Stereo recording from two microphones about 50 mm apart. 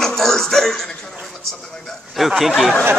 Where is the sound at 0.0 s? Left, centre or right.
Centre.